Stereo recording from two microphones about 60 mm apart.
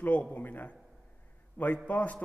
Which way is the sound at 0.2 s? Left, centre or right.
Left.